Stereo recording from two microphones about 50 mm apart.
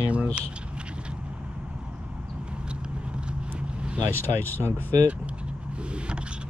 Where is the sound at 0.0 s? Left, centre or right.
Right.